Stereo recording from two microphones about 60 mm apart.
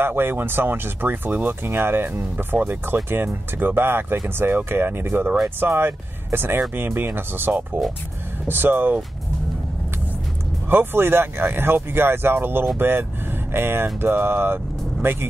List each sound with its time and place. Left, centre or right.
0.0 s speech: right
10.7 s speech: right